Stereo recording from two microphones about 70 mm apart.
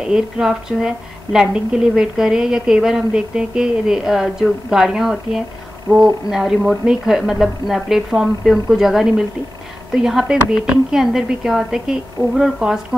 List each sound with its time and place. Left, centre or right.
0.0 s a woman's voice: centre